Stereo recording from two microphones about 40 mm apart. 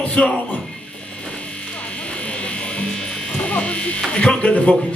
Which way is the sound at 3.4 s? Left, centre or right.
Left.